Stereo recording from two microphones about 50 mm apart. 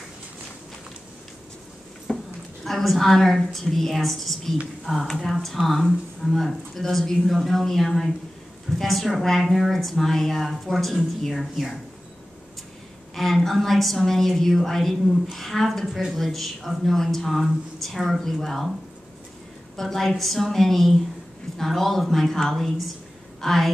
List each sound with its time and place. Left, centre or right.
2.1 s a sound: centre
2.6 s speech: centre
13.1 s speech: centre
19.8 s speech: centre